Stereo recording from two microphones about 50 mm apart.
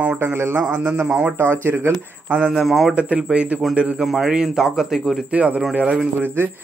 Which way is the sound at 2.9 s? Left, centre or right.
Right.